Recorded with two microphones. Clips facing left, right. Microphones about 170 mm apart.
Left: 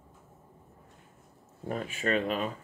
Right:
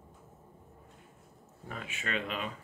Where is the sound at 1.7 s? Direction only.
40° left (ahead or behind).